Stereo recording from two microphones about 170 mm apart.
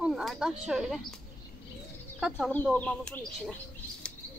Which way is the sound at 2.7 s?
5° left (ahead or behind).